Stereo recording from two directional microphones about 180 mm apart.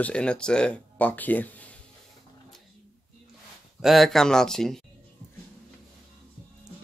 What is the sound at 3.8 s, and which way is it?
Speech, centre (ahead or behind).